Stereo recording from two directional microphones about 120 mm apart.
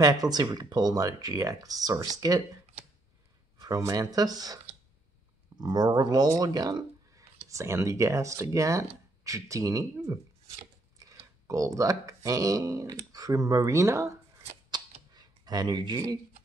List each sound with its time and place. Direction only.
0.0 s speech: 30° right (ahead or behind)
3.5 s speech: 30° right (ahead or behind)
5.6 s speech: 35° right (ahead or behind)